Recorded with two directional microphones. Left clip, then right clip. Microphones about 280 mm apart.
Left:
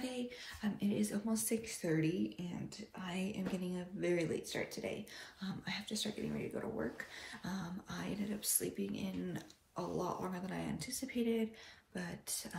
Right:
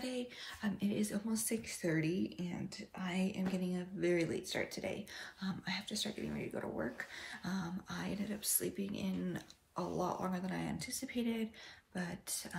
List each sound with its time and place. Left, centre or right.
0.0 s speech: centre